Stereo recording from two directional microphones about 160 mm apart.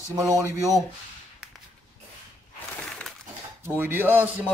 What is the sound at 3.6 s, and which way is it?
Speech, 15° right (ahead or behind).